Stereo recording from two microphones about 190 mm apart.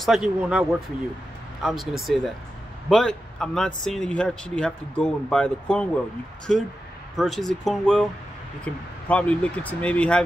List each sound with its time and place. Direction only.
0.0 s speech: centre (ahead or behind)